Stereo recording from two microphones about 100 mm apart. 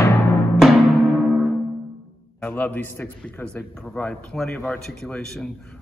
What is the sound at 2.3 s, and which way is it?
A man's voice, 15° left (ahead or behind).